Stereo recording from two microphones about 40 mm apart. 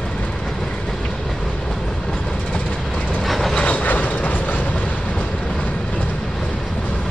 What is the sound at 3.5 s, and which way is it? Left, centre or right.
Train, left.